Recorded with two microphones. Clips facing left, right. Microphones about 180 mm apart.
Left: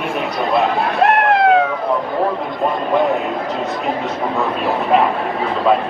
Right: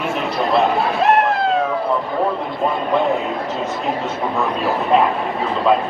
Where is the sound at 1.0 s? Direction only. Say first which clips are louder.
Left 4 dB; 65° left (ahead or behind).